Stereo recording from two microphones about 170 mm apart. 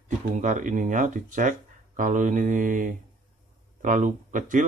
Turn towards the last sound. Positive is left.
turn(degrees=-50)  # may be behind; listen again after turning